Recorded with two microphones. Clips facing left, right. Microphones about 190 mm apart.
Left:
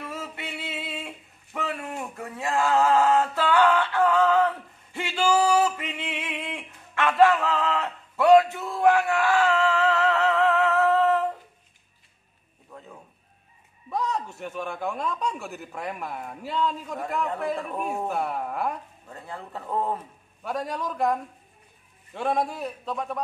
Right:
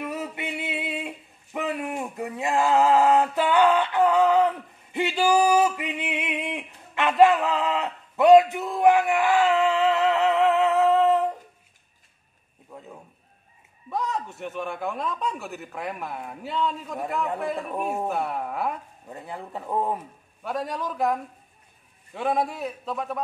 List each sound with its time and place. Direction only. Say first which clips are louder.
0.0 s male singing: right 5 dB; 15° right (ahead or behind)
12.7 s a sound: right 2 dB; 10° right (ahead or behind)
13.8 s a man's voice: even; centre (ahead or behind)
19.0 s a man's voice: right 3 dB; 15° right (ahead or behind)
20.4 s a man's voice: right 1 dB; centre (ahead or behind)